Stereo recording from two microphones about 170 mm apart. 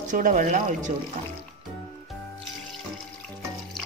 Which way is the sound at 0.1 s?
50° right (ahead or behind).